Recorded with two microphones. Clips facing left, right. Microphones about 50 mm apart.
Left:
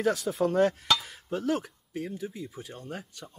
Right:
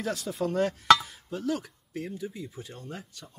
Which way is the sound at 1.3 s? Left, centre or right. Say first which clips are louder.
Left 2 dB; left.